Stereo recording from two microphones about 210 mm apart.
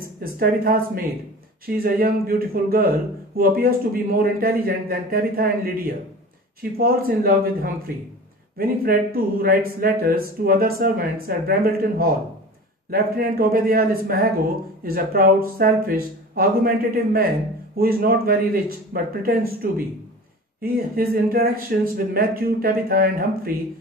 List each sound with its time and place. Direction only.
0.2 s speech: 45° right (ahead or behind)